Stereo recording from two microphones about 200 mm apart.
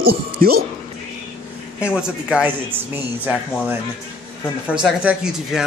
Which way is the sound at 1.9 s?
5° right (ahead or behind).